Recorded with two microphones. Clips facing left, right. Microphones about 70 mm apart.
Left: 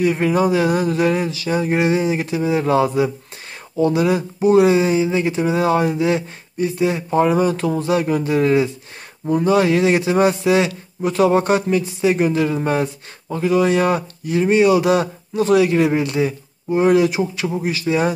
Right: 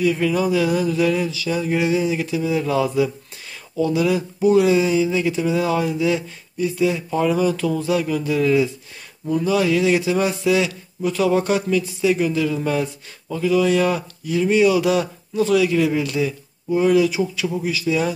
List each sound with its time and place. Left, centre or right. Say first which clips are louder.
0.0 s a man's voice: left 2 dB; left